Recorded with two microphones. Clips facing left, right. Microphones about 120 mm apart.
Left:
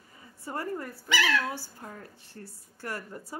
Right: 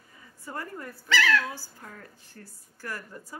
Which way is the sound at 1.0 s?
15° left (ahead or behind).